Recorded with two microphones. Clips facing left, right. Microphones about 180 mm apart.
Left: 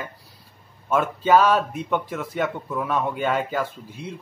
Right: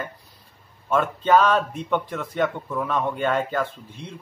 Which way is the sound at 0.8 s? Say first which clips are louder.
Even; 5° left (ahead or behind).